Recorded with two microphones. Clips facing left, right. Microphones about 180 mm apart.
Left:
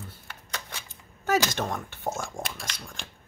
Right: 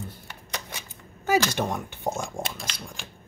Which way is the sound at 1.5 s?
10° right (ahead or behind).